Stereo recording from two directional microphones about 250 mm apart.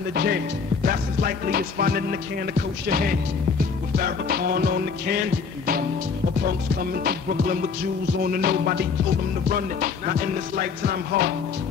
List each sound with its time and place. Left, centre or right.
0.1 s speech: right
6.8 s speech: right